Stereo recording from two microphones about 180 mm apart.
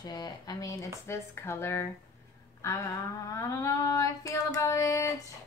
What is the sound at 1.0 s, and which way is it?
Child singing, 15° left (ahead or behind).